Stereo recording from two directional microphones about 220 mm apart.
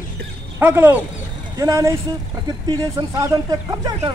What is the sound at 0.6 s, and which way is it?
Speech, 10° right (ahead or behind).